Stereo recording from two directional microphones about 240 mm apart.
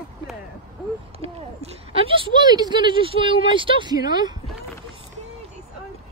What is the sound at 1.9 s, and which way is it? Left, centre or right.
Speech, centre.